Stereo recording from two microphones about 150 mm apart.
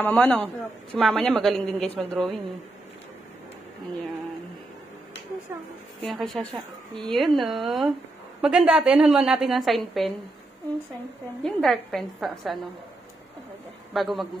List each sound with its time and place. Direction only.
0.0 s a man's voice: 10° left (ahead or behind)
6.0 s speech: centre (ahead or behind)
11.4 s speech: centre (ahead or behind)
13.9 s speech: centre (ahead or behind)